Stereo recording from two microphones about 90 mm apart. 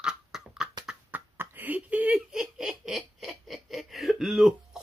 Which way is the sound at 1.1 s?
25° right (ahead or behind).